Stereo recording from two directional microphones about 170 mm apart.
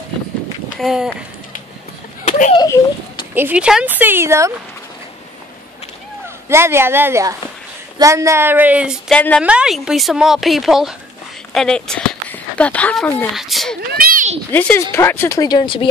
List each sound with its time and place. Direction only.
0.7 s a woman's voice: centre (ahead or behind)
2.5 s a child's voice: 25° left (ahead or behind)
3.3 s a woman's voice: 10° right (ahead or behind)
6.2 s a woman's voice: 15° right (ahead or behind)
13.7 s a sound: 65° right (ahead or behind)
14.5 s speech: 10° left (ahead or behind); by 15.9 s 30° left (ahead or behind)